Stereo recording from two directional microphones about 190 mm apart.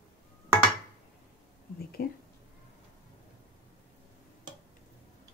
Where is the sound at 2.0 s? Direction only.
50° left (ahead or behind).